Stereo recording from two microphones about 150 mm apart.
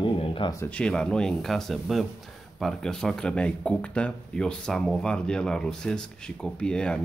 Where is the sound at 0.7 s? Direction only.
5° left (ahead or behind).